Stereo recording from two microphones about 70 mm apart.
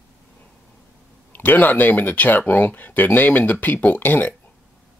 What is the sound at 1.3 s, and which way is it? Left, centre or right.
Speech, left.